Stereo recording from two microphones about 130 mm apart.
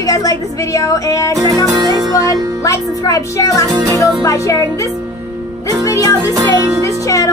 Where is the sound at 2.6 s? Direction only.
25° left (ahead or behind).